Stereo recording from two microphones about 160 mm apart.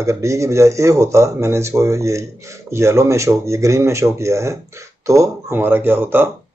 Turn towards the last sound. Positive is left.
turn(degrees=-15)  # may be behind; listen again after turning